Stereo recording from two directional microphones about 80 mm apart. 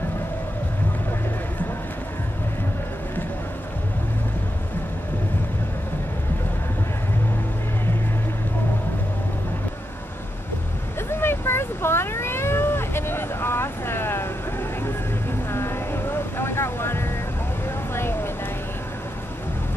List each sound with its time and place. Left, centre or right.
11.0 s vehicle: left